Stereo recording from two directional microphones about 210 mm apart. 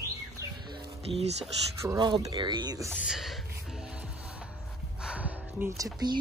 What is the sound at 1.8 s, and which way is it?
Speech, 15° right (ahead or behind).